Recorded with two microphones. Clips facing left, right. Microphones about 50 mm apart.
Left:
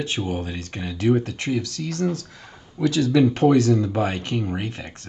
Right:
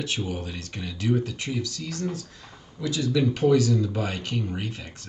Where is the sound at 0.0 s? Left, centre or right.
Left.